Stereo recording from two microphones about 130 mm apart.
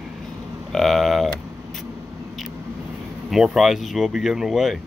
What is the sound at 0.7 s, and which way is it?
Speech, centre (ahead or behind).